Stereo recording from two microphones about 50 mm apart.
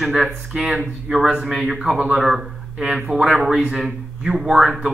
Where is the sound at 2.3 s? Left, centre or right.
Centre.